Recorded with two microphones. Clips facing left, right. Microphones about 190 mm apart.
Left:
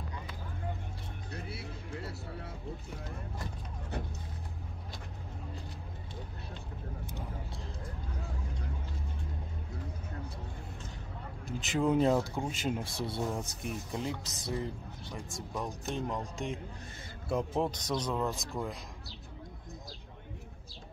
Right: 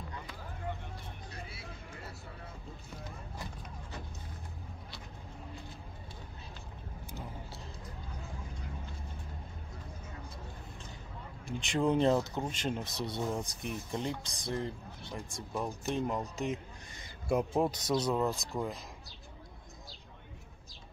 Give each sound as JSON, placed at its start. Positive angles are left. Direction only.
{"t": 1.5, "sound": "music", "side_deg": 65}
{"t": 7.1, "sound": "vehicle", "side_deg": -5}
{"t": 11.4, "sound": "speech", "side_deg": 5}